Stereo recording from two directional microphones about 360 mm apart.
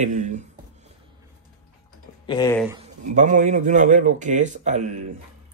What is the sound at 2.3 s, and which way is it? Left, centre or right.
Speech, centre.